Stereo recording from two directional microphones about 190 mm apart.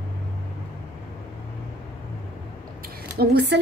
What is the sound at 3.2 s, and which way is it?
Speech, 60° right (ahead or behind).